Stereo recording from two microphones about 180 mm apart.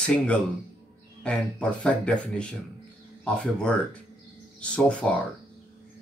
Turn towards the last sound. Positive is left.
turn(degrees=5)  # may be behind; listen again after turning